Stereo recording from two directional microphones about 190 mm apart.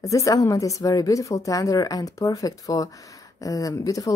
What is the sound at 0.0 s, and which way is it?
A woman's voice, 15° left (ahead or behind).